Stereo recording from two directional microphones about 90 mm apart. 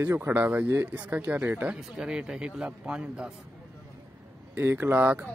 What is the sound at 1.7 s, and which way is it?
Speech, 10° right (ahead or behind).